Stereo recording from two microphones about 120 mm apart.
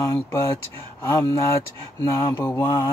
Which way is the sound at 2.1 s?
20° left (ahead or behind).